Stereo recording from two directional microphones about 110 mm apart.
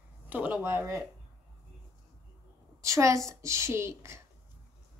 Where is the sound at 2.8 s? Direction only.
25° right (ahead or behind).